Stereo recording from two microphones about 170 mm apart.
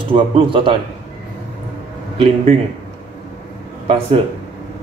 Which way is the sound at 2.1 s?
30° right (ahead or behind).